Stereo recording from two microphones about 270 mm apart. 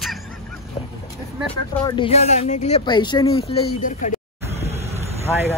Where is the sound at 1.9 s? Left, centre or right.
Centre.